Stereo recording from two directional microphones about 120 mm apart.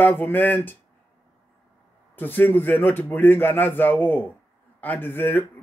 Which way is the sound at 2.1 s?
15° left (ahead or behind).